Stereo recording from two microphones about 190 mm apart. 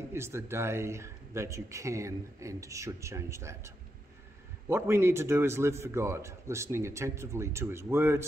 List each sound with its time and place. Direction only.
0.1 s a man's voice: 15° right (ahead or behind)